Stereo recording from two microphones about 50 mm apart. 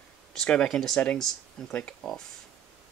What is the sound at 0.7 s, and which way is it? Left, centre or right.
Speech, centre.